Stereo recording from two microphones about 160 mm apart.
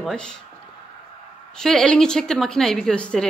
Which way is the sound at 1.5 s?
5° left (ahead or behind).